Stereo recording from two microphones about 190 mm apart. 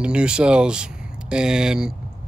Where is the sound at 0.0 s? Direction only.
5° right (ahead or behind).